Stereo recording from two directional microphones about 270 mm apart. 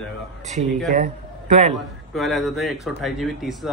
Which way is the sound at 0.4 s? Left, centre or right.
Right.